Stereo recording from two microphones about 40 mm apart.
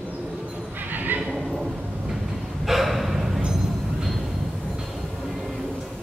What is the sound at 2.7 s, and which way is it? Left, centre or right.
Gasp, centre.